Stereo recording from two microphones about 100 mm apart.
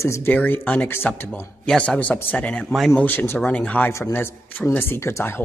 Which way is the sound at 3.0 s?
15° left (ahead or behind).